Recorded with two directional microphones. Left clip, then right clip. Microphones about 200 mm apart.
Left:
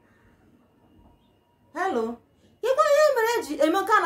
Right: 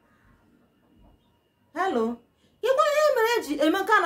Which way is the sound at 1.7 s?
15° right (ahead or behind).